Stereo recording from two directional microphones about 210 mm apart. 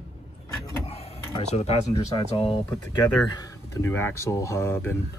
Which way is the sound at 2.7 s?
10° left (ahead or behind).